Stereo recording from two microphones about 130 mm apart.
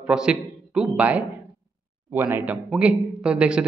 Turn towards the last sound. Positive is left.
turn(degrees=-5)  # may be behind; listen again after turning